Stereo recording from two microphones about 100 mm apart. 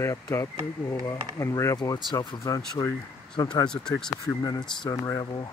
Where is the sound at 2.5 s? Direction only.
35° left (ahead or behind).